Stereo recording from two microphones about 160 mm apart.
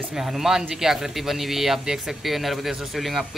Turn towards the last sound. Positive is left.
turn(degrees=0)  # may be behind; listen again after turning